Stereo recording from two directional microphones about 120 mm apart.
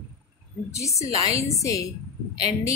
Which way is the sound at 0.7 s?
25° left (ahead or behind).